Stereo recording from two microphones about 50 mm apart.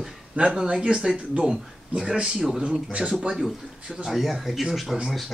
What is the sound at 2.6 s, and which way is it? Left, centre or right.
Speech, right.